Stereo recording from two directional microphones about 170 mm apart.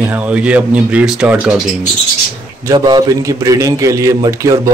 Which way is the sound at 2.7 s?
25° right (ahead or behind).